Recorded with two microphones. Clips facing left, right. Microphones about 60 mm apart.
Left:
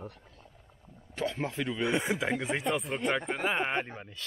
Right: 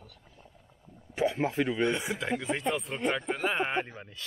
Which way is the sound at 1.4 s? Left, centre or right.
Centre.